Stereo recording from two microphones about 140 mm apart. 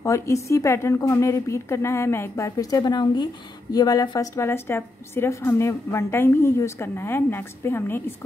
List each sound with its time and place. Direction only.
0.0 s a woman's voice: 20° left (ahead or behind)